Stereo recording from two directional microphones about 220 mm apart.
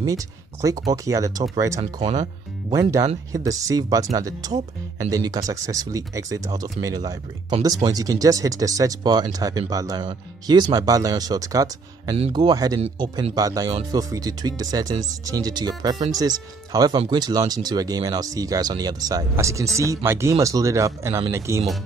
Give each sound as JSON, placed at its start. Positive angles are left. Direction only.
{"t": 0.0, "sound": "speech", "side_deg": -15}
{"t": 1.8, "sound": "a man's voice", "side_deg": -30}
{"t": 2.7, "sound": "a man's voice", "side_deg": -15}